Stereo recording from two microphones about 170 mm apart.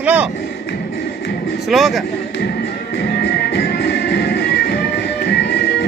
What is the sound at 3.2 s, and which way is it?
Music, 80° left.